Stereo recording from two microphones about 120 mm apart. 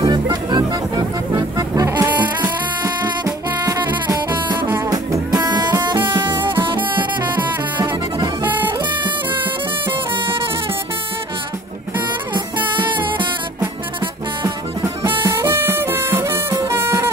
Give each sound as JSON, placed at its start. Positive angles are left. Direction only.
{"t": 0.0, "sound": "music", "side_deg": -35}
{"t": 2.0, "sound": "music", "side_deg": -15}
{"t": 2.8, "sound": "music", "side_deg": -30}
{"t": 7.7, "sound": "music", "side_deg": -40}
{"t": 8.5, "sound": "music", "side_deg": -15}
{"t": 12.7, "sound": "music", "side_deg": -40}
{"t": 14.4, "sound": "music", "side_deg": -30}